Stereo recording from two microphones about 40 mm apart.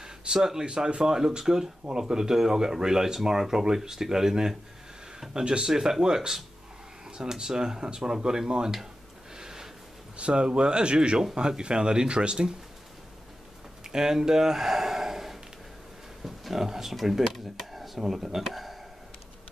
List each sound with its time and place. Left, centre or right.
0.0 s speech: centre
5.3 s speech: right
9.4 s a sound: centre
10.1 s speech: right
13.8 s a sound: centre
16.3 s speech: centre